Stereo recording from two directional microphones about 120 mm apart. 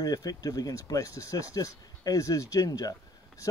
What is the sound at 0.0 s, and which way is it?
Speech, 30° left (ahead or behind).